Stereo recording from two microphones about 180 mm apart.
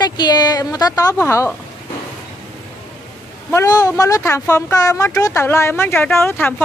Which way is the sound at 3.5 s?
15° left (ahead or behind).